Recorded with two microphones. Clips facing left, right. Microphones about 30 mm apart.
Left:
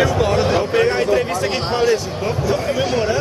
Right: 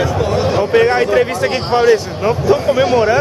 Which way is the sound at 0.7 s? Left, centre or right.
Centre.